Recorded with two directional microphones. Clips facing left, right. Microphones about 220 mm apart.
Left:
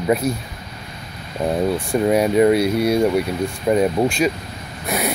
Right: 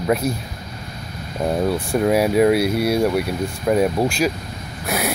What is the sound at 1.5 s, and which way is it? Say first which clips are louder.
Speech: left 1 dB; centre (ahead or behind).